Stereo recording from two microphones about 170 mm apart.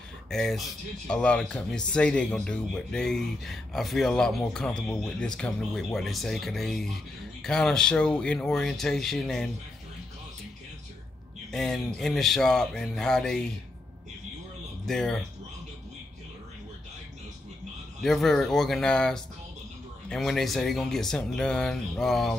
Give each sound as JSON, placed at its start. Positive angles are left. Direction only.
{"t": 0.3, "sound": "speech", "side_deg": 0}
{"t": 11.5, "sound": "speech", "side_deg": 0}
{"t": 14.9, "sound": "speech", "side_deg": 5}
{"t": 18.0, "sound": "speech", "side_deg": 0}